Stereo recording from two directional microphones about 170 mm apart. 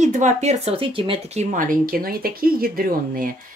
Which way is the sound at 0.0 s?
45° right (ahead or behind).